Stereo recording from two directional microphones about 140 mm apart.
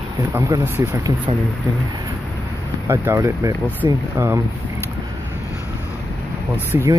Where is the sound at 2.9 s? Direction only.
20° right (ahead or behind).